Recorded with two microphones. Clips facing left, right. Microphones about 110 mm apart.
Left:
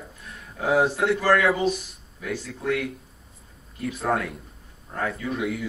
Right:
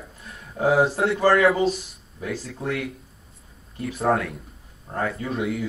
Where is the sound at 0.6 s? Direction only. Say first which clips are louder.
Right 6 dB; 35° right (ahead or behind).